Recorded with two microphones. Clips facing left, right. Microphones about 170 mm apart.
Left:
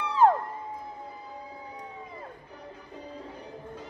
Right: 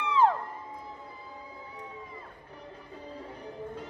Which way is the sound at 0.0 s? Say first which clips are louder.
Left 3 dB; 45° left (ahead or behind).